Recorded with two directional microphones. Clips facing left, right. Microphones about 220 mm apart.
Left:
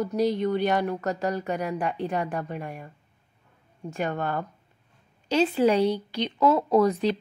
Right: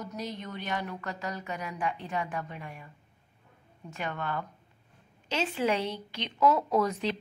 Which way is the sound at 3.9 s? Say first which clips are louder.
Left 6 dB; 45° left (ahead or behind).